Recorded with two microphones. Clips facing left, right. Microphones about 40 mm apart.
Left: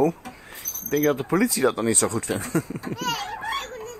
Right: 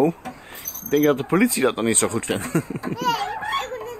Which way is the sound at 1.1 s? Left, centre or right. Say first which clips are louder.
Right 3 dB; right.